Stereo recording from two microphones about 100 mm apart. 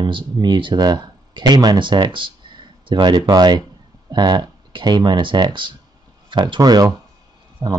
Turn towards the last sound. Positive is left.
turn(degrees=-40)  # may be behind; listen again after turning